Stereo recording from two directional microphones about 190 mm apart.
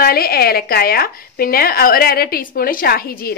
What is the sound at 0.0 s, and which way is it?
A woman's voice, 50° left (ahead or behind).